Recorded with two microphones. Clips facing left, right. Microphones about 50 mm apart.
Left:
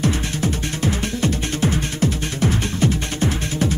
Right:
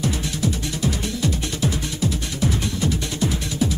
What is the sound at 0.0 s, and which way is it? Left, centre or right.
Music, left.